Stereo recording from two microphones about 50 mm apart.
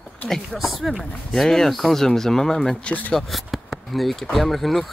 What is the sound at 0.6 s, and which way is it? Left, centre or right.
Speech, centre.